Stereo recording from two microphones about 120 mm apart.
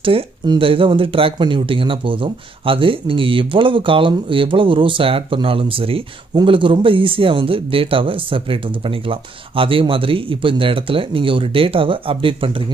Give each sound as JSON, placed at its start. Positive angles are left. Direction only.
{"t": 0.0, "sound": "speech", "side_deg": -50}